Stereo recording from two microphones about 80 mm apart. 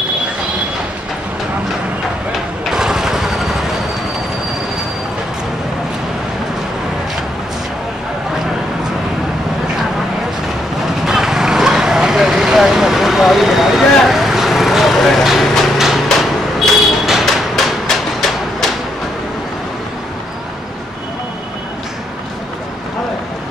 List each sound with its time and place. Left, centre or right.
2.6 s vehicle: centre
11.1 s vehicle: centre